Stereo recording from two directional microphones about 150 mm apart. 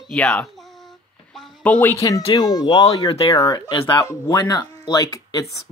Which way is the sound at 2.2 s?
35° left (ahead or behind).